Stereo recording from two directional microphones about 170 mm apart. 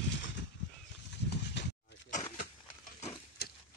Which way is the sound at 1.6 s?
90° left.